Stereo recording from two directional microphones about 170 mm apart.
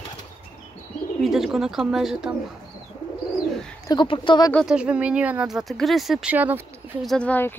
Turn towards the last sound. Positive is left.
turn(degrees=10)  # may be behind; listen again after turning